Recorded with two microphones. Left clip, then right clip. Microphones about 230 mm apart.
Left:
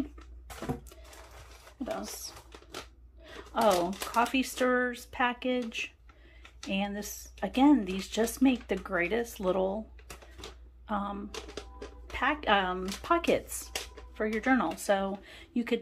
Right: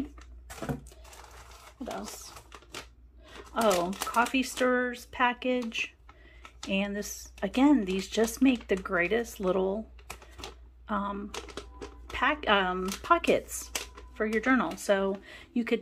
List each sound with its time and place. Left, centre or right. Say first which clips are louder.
3.3 s speech: even; centre
10.9 s speech: right 2 dB; centre